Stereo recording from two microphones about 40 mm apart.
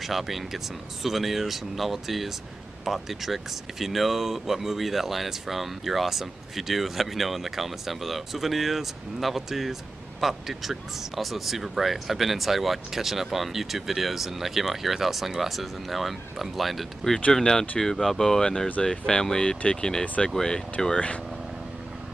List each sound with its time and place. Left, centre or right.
0.0 s speech: centre
17.3 s speech: centre